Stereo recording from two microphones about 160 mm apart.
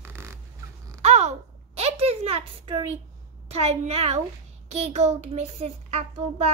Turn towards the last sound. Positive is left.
turn(degrees=-40)  # may be behind; listen again after turning